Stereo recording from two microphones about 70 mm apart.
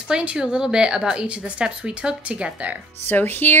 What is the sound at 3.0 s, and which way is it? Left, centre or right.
Speech, left.